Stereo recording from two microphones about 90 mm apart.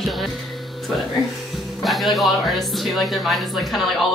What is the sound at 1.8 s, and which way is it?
Speech, centre (ahead or behind).